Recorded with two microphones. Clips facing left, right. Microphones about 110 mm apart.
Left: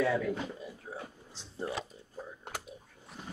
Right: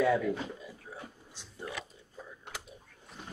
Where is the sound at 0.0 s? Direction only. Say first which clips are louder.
Right 2 dB; 5° right (ahead or behind).